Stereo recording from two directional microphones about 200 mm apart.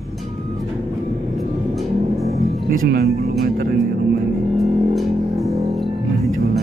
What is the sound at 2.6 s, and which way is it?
Speech, 50° right (ahead or behind).